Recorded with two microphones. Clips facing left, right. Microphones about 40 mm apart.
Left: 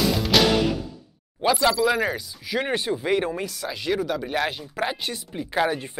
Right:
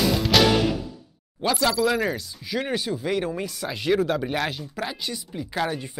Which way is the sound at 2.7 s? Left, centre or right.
Left.